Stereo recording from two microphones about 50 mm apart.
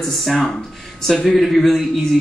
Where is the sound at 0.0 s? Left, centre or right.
Centre.